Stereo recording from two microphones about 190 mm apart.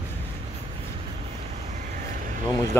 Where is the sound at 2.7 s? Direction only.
10° left (ahead or behind).